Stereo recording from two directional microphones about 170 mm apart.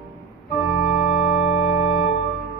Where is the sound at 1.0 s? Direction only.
40° left (ahead or behind).